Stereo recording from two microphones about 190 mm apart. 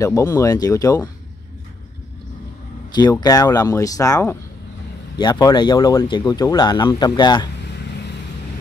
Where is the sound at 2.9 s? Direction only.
20° left (ahead or behind).